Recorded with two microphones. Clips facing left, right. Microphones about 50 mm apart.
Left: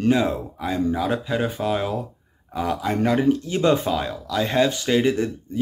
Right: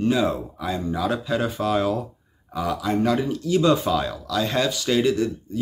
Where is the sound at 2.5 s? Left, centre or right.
Left.